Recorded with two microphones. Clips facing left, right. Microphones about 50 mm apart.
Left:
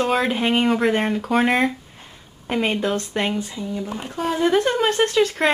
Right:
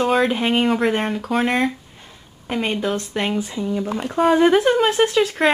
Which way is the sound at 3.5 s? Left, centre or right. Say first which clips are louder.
Right 5 dB; centre.